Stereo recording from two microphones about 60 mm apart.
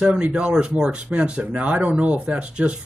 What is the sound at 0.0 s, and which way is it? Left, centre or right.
Speech, centre.